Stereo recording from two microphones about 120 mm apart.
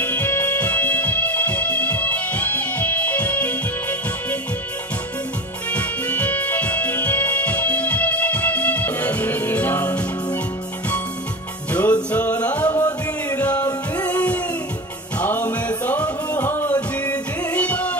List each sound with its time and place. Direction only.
0.0 s music: 20° left (ahead or behind)
5.7 s music: 10° left (ahead or behind)
11.7 s music: 15° left (ahead or behind)
13.7 s music: 30° left (ahead or behind)
15.1 s music: 15° left (ahead or behind)